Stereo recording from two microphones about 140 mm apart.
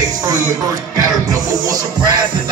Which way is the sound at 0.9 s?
25° right (ahead or behind).